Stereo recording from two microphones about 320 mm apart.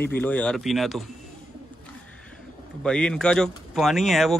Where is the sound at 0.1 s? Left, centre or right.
Centre.